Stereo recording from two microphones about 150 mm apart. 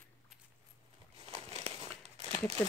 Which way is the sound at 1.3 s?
45° right (ahead or behind).